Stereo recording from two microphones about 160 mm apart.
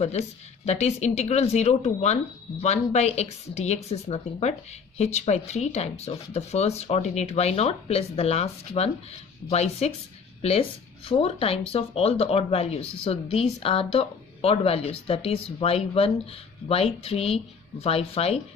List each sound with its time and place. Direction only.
0.7 s a woman's voice: 45° left (ahead or behind)